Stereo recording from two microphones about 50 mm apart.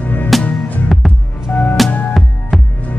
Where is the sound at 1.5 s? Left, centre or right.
Left.